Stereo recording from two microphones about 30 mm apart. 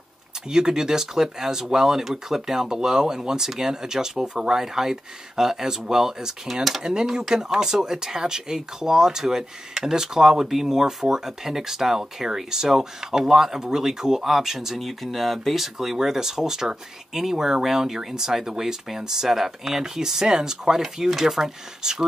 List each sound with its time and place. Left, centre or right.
0.5 s speech: right
14.8 s speech: centre